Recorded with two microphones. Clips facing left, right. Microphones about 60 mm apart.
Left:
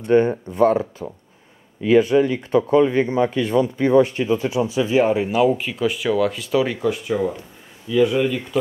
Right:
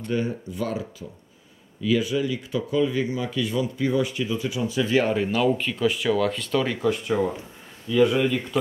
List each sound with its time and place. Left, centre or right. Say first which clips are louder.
0.1 s speech: left 11 dB; left; by 8.5 s centre